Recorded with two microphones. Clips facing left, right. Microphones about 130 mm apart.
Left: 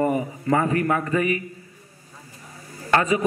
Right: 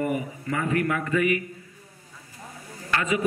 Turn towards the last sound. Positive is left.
turn(degrees=40)  # may be behind; listen again after turning